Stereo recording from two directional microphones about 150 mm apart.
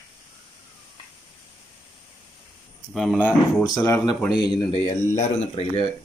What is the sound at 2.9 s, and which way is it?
Speech, 5° left (ahead or behind).